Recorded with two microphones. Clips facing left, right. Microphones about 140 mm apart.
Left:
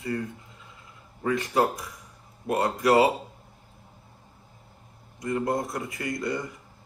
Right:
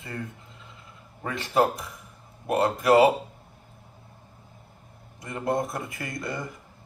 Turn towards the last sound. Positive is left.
turn(degrees=-25)  # may be behind; listen again after turning